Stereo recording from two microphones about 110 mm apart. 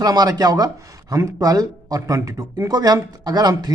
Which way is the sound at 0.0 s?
35° right (ahead or behind).